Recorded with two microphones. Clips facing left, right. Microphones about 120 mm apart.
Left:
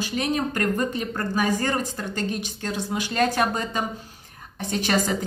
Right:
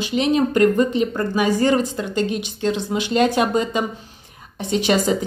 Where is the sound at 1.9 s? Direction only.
45° left (ahead or behind).